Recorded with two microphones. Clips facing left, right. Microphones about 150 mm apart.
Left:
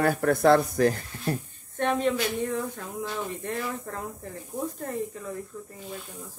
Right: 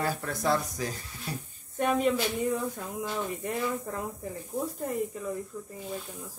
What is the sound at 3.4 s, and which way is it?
Speech, 10° right (ahead or behind).